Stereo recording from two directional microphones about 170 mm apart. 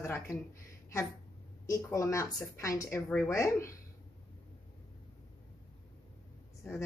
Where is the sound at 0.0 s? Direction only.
15° left (ahead or behind).